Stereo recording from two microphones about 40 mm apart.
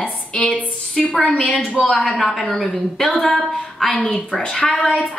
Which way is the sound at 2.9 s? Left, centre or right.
Centre.